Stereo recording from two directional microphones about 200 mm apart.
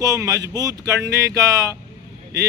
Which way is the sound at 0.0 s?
15° right (ahead or behind).